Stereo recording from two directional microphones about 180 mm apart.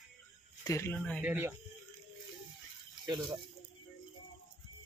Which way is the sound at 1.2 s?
10° right (ahead or behind).